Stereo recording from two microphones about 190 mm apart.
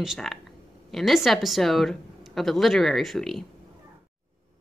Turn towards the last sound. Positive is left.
turn(degrees=0)  # may be behind; listen again after turning